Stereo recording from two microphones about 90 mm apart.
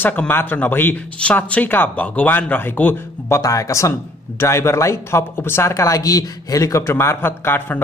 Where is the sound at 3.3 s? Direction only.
35° left (ahead or behind); by 7.8 s 20° left (ahead or behind).